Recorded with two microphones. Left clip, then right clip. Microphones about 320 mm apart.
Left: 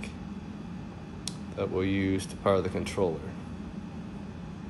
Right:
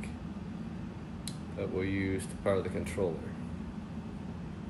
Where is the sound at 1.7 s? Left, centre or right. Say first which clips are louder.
Left 4 dB; left.